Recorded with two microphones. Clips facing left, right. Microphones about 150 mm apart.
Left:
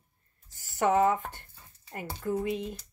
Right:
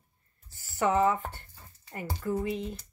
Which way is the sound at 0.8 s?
45° left (ahead or behind).